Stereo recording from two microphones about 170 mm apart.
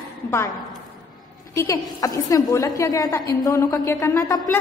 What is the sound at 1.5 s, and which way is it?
A woman's voice, 20° left (ahead or behind).